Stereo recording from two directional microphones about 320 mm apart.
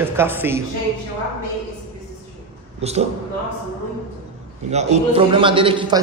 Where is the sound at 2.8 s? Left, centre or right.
Centre.